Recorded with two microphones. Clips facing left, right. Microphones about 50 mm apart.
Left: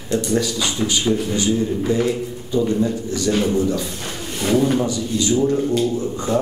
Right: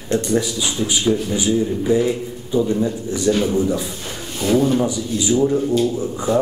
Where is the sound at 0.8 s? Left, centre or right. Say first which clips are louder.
Even; left.